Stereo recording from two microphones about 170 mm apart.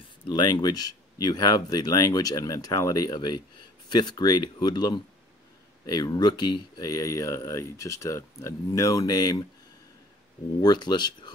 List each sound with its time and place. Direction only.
0.3 s speech: 25° left (ahead or behind)
10.6 s speech: 25° left (ahead or behind)